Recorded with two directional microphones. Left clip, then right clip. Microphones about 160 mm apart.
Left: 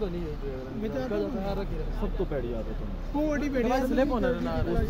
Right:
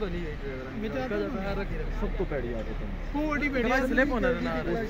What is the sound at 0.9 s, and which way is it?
Speech, 90° left.